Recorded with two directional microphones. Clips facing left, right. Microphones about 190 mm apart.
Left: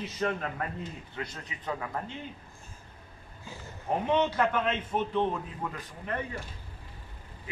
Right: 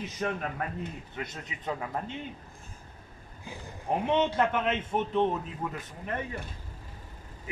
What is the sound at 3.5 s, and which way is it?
A man's voice, 15° right (ahead or behind).